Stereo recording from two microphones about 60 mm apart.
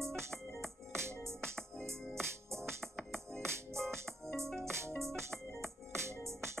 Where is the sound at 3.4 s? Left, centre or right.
Right.